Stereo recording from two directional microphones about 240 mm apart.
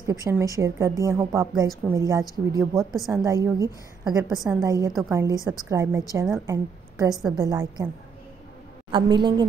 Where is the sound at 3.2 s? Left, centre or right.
Centre.